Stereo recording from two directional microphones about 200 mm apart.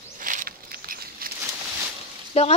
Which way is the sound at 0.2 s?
40° right (ahead or behind).